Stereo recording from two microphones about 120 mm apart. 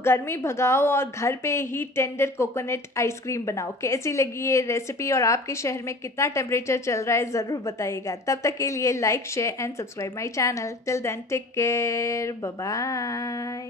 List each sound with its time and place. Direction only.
0.0 s a woman's voice: 20° left (ahead or behind)